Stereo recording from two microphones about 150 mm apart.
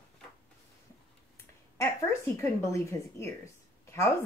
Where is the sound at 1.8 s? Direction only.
20° left (ahead or behind).